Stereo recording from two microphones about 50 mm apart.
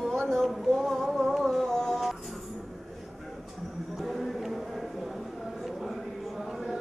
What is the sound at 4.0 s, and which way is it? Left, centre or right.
Music, centre.